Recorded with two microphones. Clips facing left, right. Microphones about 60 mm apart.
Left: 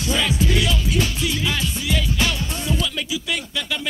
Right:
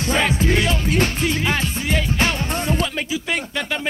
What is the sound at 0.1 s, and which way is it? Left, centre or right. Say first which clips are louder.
Music: right 2 dB; right.